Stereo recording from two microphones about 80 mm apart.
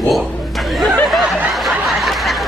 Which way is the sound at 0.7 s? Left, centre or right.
Centre.